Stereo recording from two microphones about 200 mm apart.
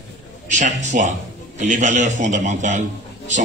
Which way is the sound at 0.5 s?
35° right (ahead or behind).